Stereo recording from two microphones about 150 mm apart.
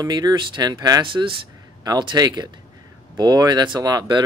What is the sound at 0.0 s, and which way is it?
Speech, 25° right (ahead or behind).